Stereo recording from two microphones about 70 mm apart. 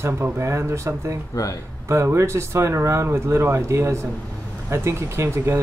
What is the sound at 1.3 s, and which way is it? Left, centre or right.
Speech, left.